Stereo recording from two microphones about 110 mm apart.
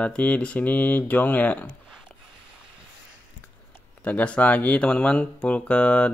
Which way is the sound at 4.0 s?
10° left (ahead or behind).